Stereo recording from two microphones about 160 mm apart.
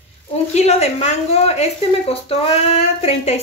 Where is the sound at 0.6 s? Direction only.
40° left (ahead or behind).